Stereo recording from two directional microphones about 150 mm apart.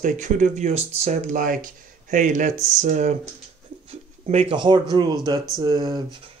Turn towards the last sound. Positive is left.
turn(degrees=-30)  # may be behind; listen again after turning